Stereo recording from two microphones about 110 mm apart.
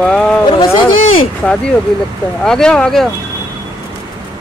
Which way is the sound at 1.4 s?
10° left (ahead or behind).